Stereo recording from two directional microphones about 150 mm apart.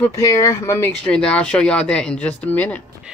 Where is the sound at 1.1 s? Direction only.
5° left (ahead or behind).